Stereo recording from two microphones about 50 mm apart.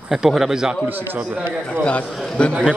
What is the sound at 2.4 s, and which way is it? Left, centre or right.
Speech, left.